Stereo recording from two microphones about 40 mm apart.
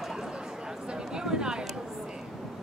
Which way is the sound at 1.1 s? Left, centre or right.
Centre.